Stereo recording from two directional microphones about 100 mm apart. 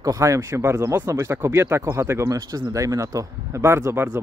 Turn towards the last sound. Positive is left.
turn(degrees=-25)  # may be behind; listen again after turning